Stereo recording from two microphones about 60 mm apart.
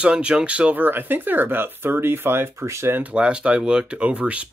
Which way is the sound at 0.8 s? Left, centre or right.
Right.